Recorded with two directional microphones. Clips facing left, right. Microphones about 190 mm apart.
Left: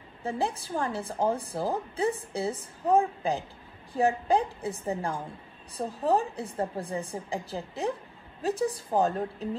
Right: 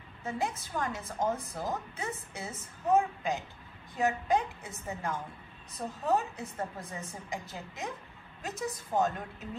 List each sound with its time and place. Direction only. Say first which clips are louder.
0.2 s speech: left 4 dB; 30° left (ahead or behind)